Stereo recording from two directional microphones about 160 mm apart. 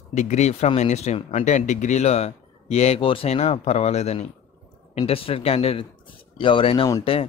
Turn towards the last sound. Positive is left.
turn(degrees=35)  # may be behind; listen again after turning